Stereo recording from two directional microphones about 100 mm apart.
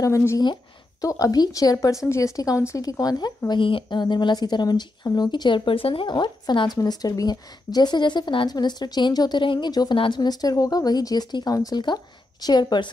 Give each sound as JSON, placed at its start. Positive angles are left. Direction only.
{"t": 0.0, "sound": "a woman's voice", "side_deg": 30}
{"t": 6.0, "sound": "a woman's voice", "side_deg": 45}